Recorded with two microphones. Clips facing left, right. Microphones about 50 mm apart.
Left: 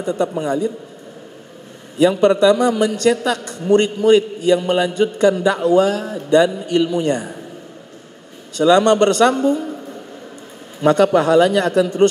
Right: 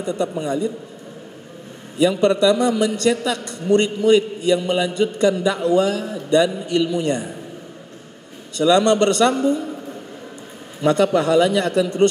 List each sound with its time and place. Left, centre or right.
0.0 s a man's voice: left
2.0 s a man's voice: left
8.5 s a man's voice: left
10.8 s a man's voice: left